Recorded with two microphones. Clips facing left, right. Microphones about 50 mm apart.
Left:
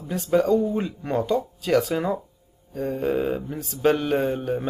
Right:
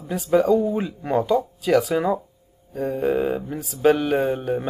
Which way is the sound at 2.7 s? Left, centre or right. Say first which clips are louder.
Right 2 dB; centre.